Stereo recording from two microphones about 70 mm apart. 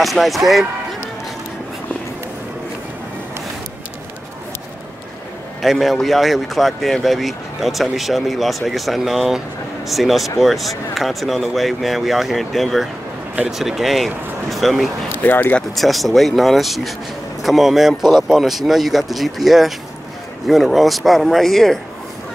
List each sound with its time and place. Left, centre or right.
0.0 s speech: centre
5.6 s speech: centre
15.2 s speech: left
15.7 s speech: centre